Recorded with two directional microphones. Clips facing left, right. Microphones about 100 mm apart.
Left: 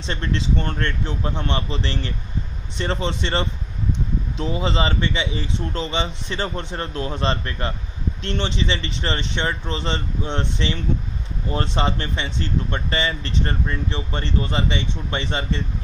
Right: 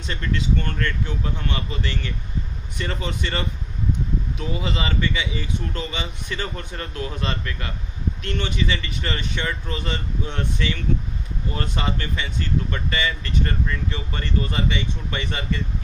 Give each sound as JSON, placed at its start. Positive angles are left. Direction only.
{"t": 0.0, "sound": "speech", "side_deg": 30}